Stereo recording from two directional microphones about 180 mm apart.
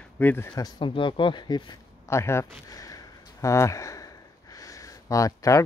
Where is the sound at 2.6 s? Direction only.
20° left (ahead or behind).